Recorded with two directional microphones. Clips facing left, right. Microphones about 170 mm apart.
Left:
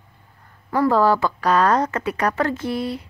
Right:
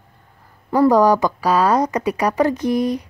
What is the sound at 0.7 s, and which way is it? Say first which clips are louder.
A woman's voice: right 4 dB; 15° right (ahead or behind).